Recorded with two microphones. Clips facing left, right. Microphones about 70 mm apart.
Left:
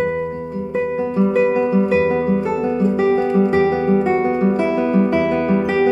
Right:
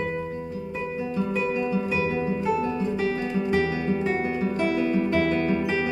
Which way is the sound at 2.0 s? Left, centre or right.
Left.